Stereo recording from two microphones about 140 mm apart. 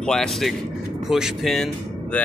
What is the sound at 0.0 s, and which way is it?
Speech, 5° left (ahead or behind).